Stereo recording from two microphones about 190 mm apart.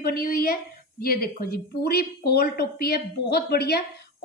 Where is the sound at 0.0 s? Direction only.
50° left (ahead or behind).